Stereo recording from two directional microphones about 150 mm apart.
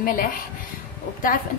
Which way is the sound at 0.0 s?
70° left (ahead or behind).